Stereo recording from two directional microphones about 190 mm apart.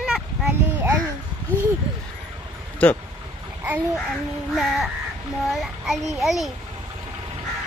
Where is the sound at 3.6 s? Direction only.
10° right (ahead or behind).